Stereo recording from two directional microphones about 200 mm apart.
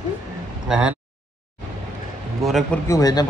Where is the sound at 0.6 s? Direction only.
5° right (ahead or behind).